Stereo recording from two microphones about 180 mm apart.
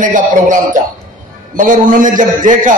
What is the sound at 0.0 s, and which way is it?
Speech, 45° right (ahead or behind).